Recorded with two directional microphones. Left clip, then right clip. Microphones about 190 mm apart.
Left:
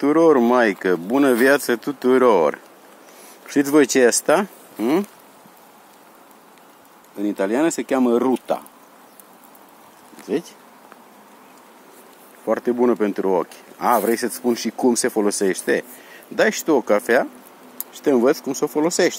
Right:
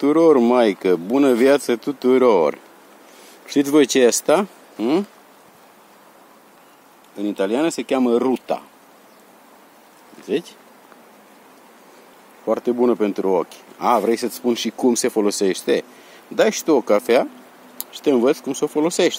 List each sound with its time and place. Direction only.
0.0 s speech: 25° right (ahead or behind)
4.3 s speech: 10° right (ahead or behind)
7.2 s speech: centre (ahead or behind)
10.2 s speech: 10° right (ahead or behind)
12.4 s speech: 5° right (ahead or behind)
14.1 s speech: 25° right (ahead or behind)
14.4 s speech: 10° right (ahead or behind)
15.0 s speech: 30° right (ahead or behind)
16.3 s speech: 10° right (ahead or behind)